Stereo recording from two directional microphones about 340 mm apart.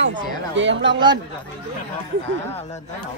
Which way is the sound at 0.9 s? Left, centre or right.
Centre.